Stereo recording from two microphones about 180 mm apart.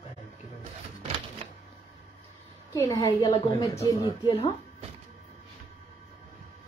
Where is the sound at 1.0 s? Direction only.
35° right (ahead or behind).